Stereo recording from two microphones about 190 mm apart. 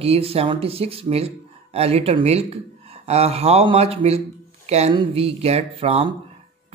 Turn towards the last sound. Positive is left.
turn(degrees=-30)  # may be behind; listen again after turning